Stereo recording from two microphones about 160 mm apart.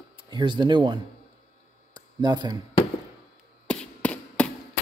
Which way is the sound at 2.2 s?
25° right (ahead or behind).